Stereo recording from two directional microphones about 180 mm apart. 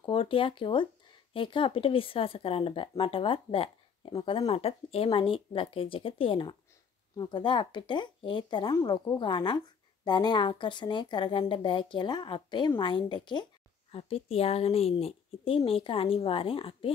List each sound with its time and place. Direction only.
0.0 s speech: 30° left (ahead or behind)